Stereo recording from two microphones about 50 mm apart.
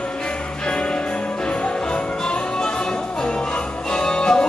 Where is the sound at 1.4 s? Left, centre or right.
Left.